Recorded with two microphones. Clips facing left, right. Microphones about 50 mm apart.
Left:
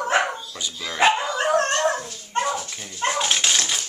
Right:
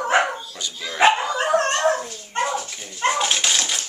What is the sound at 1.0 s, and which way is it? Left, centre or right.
Dog, centre.